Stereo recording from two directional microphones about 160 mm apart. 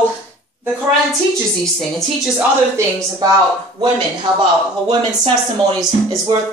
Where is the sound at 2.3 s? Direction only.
20° right (ahead or behind).